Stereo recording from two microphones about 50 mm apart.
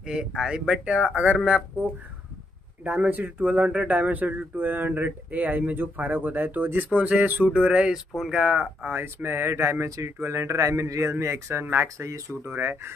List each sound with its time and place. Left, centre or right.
0.0 s speech: centre
2.8 s speech: right
8.5 s speech: right
10.2 s speech: right
12.4 s speech: right